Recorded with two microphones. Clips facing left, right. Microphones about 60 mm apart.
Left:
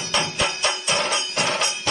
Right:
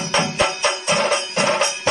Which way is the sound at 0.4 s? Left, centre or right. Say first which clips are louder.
Right 4 dB; right.